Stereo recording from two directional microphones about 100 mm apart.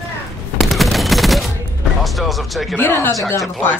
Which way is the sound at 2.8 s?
20° left (ahead or behind).